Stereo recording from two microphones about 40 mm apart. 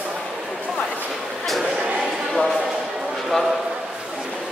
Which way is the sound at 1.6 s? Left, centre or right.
Right.